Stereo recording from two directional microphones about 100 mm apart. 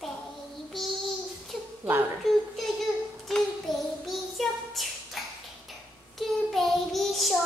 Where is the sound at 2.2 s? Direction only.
Centre (ahead or behind).